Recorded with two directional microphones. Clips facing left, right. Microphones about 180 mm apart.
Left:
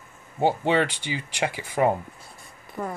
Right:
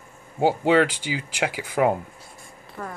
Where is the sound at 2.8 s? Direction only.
15° left (ahead or behind).